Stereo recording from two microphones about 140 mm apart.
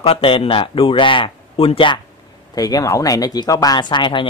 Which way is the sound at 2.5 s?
25° left (ahead or behind).